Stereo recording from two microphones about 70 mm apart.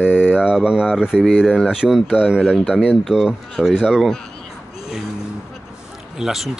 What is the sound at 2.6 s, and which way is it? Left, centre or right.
Speech, centre.